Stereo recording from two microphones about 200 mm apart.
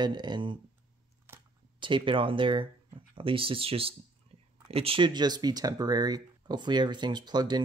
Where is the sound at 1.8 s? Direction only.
25° right (ahead or behind).